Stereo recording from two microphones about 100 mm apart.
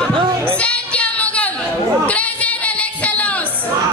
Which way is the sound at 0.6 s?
15° left (ahead or behind).